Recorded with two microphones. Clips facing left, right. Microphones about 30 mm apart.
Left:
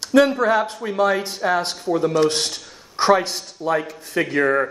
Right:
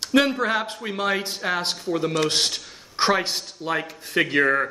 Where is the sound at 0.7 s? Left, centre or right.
Centre.